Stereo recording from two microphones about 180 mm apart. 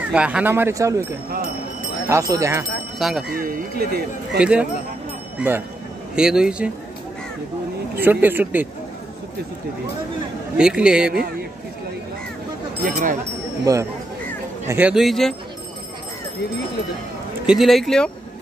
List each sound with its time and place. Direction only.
0.1 s speech: 5° right (ahead or behind)
1.3 s a sound: 50° right (ahead or behind)
2.0 s speech: 15° right (ahead or behind)
3.0 s speech: centre (ahead or behind)
3.3 s speech: 55° right (ahead or behind)
4.4 s speech: 5° right (ahead or behind)
8.0 s speech: 10° right (ahead or behind)
10.6 s speech: 5° right (ahead or behind)
12.8 s speech: 45° right (ahead or behind)
13.7 s speech: 20° right (ahead or behind)
14.7 s speech: 5° right (ahead or behind)
17.5 s speech: centre (ahead or behind)